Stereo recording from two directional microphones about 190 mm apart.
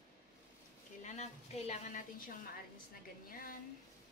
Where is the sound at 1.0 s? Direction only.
35° left (ahead or behind).